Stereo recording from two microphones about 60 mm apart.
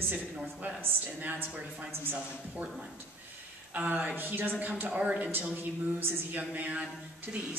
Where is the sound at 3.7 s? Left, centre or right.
Right.